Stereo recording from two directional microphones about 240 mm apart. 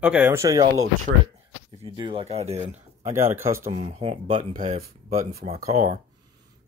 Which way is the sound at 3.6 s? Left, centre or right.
Right.